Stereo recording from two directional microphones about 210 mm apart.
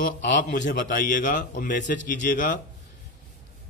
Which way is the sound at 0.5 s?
35° left (ahead or behind).